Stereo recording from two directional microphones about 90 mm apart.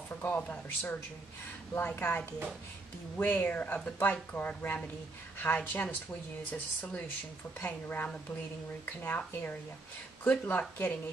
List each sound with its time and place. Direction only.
0.2 s speech: 20° left (ahead or behind)
7.6 s speech: 20° left (ahead or behind)